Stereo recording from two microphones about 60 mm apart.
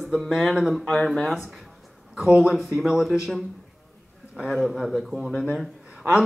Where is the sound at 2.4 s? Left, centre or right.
Centre.